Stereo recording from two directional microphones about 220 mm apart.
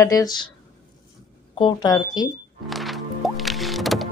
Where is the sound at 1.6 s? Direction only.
20° left (ahead or behind).